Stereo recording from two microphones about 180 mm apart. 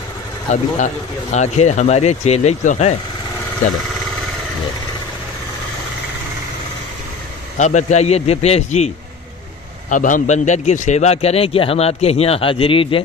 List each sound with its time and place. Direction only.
0.5 s a man's voice: 40° left (ahead or behind)
7.5 s a man's voice: 40° left (ahead or behind)